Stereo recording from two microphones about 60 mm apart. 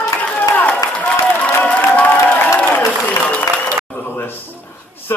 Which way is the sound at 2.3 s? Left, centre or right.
Left.